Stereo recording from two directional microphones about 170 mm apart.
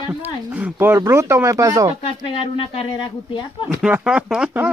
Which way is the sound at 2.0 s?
30° left (ahead or behind).